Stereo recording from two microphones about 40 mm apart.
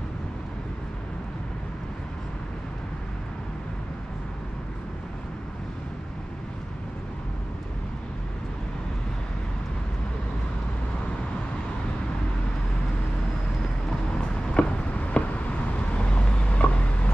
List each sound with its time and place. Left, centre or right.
14.1 s vehicle: left
16.1 s vehicle: left